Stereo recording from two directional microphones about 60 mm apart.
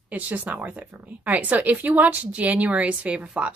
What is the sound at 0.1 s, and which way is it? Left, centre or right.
A woman's voice, right.